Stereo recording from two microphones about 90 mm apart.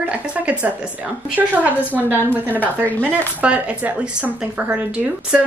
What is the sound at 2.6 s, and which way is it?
Speech, 20° left (ahead or behind).